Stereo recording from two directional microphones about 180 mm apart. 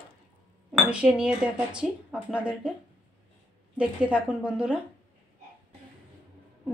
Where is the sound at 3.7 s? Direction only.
5° right (ahead or behind).